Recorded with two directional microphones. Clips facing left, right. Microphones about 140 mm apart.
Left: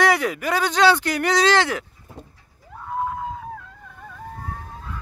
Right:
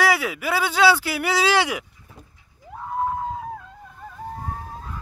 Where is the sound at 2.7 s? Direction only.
20° right (ahead or behind).